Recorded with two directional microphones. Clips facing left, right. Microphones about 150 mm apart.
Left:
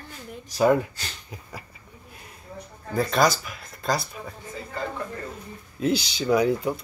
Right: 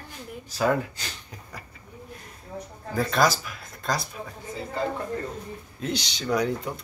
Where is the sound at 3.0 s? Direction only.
Centre (ahead or behind).